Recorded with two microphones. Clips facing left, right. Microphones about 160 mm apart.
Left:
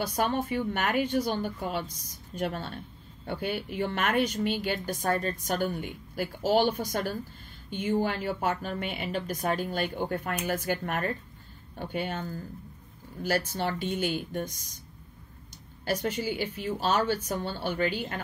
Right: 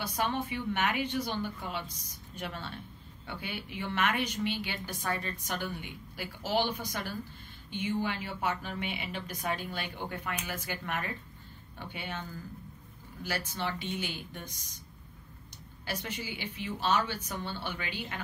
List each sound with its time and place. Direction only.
0.0 s a woman's voice: 45° left (ahead or behind)
13.6 s a woman's voice: 45° left (ahead or behind)
15.8 s a woman's voice: 45° left (ahead or behind)